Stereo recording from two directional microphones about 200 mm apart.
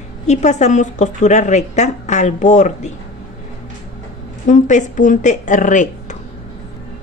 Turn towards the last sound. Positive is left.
turn(degrees=40)  # may be behind; listen again after turning